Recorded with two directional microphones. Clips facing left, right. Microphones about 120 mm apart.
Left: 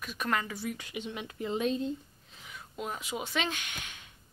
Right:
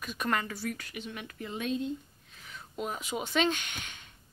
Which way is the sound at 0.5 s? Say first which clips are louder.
Even; 15° left (ahead or behind).